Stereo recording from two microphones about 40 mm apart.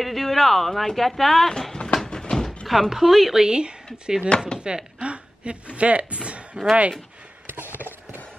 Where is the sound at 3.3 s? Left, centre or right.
Right.